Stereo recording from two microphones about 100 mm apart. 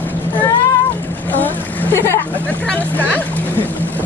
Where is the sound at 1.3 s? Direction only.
20° left (ahead or behind).